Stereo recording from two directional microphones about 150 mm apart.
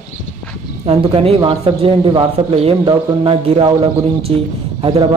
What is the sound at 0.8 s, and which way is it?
Speech, 40° right (ahead or behind).